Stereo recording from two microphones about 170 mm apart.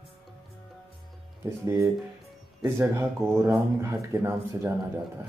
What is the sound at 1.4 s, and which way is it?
Speech, 15° right (ahead or behind).